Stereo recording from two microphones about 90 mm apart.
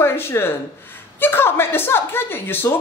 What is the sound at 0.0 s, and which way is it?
A woman's voice, 25° left (ahead or behind).